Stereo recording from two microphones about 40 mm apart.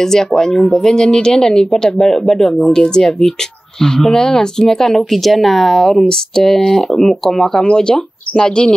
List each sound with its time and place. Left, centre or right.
0.0 s speech: centre
6.0 s speech: centre
7.5 s speech: left